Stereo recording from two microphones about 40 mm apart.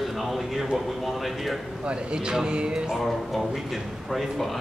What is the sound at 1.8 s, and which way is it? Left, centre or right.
Speech, right.